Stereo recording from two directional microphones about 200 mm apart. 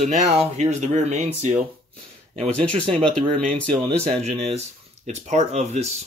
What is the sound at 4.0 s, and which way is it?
Speech, 30° right (ahead or behind).